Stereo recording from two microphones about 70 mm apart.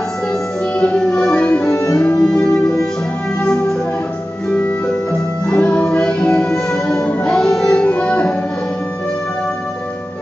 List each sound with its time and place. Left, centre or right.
0.7 s music: centre
1.7 s music: left
2.0 s music: centre
5.6 s music: centre
7.7 s music: centre